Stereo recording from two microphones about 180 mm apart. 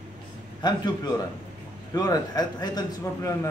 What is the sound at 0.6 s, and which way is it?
A man's voice, 20° left (ahead or behind).